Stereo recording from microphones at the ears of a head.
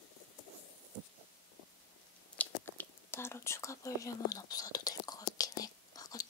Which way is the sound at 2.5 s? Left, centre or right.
Left.